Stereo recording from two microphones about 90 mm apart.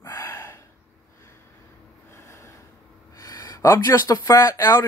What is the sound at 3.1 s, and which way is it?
Speech, 40° left (ahead or behind).